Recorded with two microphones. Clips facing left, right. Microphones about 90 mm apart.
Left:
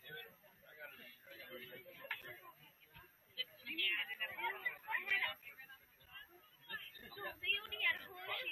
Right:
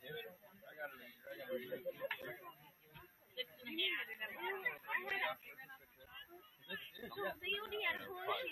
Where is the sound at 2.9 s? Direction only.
35° right (ahead or behind).